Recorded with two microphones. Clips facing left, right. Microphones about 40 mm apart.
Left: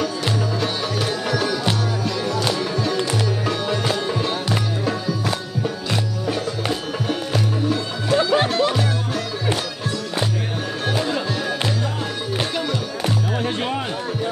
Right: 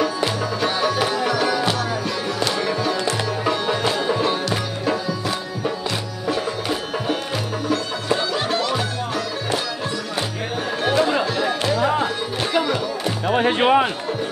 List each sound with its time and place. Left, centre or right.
0.6 s music: centre
2.7 s music: centre
6.2 s music: centre
11.4 s music: centre
13.3 s music: right